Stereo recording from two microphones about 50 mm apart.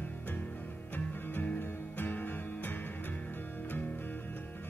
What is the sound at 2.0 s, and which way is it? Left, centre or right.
Music, left.